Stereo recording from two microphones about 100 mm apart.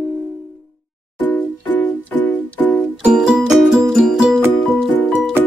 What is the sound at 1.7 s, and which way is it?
Music, 15° left (ahead or behind).